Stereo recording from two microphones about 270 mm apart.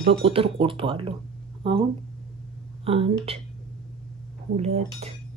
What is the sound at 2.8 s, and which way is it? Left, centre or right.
Speech, right.